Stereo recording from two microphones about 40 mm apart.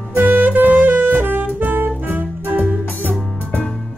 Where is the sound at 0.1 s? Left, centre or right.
Right.